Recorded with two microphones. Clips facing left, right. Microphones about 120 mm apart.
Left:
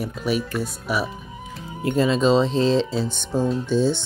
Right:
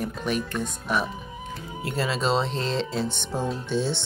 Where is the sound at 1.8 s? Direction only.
20° left (ahead or behind).